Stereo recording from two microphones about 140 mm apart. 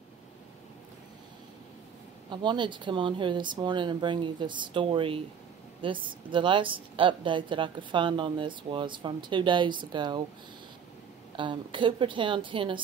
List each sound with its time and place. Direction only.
2.2 s speech: 35° right (ahead or behind)
11.3 s speech: 35° right (ahead or behind)